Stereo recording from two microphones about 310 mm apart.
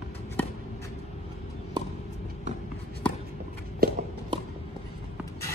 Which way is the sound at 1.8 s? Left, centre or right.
Centre.